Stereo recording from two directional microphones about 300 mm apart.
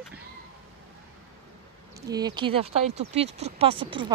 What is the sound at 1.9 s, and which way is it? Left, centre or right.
Speech, centre.